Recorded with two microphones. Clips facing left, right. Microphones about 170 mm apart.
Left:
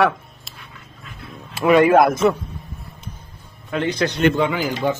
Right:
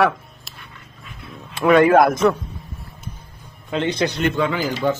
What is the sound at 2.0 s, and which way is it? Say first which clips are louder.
Speech: even; centre (ahead or behind).